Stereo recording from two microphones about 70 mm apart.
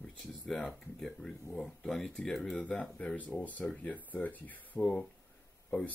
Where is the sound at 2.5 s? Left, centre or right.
Centre.